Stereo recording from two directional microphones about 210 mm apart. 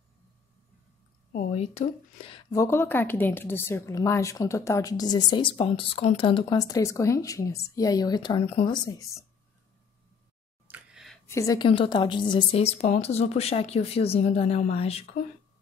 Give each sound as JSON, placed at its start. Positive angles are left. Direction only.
{"t": 1.3, "sound": "speech", "side_deg": 30}
{"t": 2.5, "sound": "a woman's voice", "side_deg": 10}
{"t": 10.7, "sound": "a sound", "side_deg": -5}
{"t": 11.2, "sound": "a woman's voice", "side_deg": 15}